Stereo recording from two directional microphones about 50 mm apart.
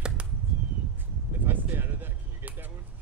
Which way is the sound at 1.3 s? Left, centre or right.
Right.